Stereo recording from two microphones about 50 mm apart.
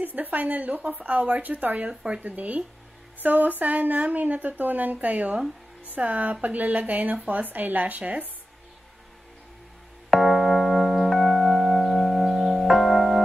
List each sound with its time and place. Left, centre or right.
0.0 s speech: right
10.1 s music: centre